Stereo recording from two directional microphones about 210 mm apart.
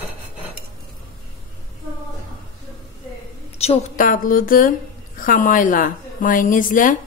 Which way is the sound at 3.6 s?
35° left (ahead or behind).